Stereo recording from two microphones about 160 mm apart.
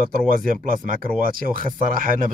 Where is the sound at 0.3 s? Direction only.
65° right (ahead or behind).